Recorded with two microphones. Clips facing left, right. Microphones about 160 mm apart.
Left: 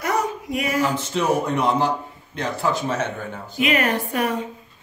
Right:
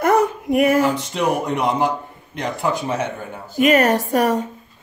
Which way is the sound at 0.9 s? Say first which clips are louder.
Right 1 dB; 15° right (ahead or behind).